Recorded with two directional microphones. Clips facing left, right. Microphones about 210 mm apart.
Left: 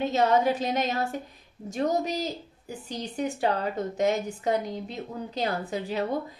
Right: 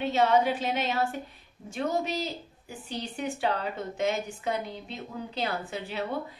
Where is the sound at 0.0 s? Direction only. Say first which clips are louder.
Left 1 dB; 40° left (ahead or behind).